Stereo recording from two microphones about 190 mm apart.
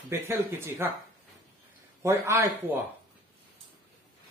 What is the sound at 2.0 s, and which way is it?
Speech, 15° right (ahead or behind).